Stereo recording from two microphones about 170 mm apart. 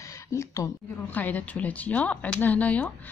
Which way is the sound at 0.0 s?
20° left (ahead or behind).